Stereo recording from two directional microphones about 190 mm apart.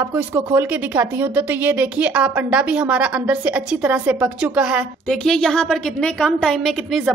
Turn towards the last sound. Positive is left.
turn(degrees=0)  # may be behind; listen again after turning